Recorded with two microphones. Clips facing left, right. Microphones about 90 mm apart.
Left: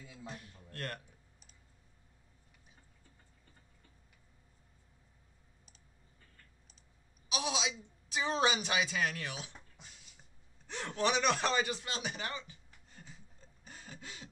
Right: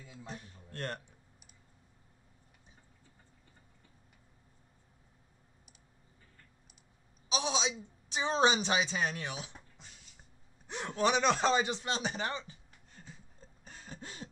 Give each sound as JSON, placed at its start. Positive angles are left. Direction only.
{"t": 0.3, "sound": "a man's voice", "side_deg": -30}
{"t": 7.2, "sound": "a woman's voice", "side_deg": -30}
{"t": 10.7, "sound": "speech", "side_deg": -15}
{"t": 11.8, "sound": "speech", "side_deg": -30}
{"t": 13.8, "sound": "a sound", "side_deg": -35}